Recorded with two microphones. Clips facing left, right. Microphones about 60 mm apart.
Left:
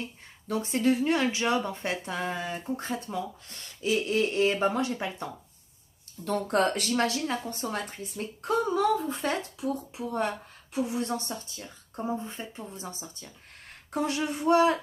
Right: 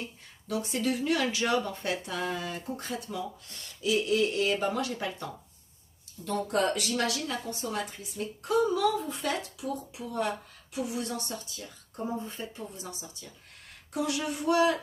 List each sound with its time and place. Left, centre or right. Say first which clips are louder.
0.5 s speech: left 4 dB; left
6.2 s speech: left 2 dB; left